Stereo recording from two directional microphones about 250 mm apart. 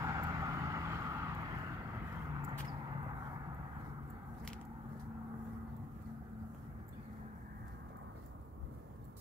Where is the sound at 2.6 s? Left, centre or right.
Centre.